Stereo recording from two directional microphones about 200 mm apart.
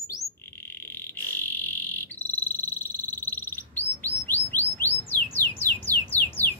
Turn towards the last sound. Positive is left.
turn(degrees=10)  # may be behind; listen again after turning